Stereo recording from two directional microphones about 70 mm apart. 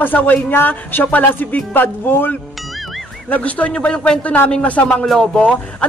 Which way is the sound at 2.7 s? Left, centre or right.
Centre.